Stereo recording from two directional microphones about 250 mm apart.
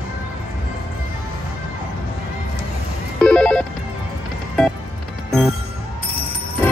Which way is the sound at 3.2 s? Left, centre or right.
Centre.